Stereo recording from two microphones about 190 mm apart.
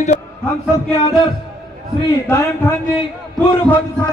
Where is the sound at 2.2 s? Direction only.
15° left (ahead or behind).